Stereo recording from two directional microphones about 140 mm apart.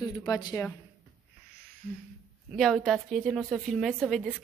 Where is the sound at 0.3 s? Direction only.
30° left (ahead or behind).